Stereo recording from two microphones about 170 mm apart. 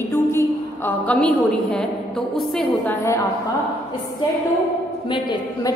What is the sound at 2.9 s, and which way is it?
Speech, 15° left (ahead or behind).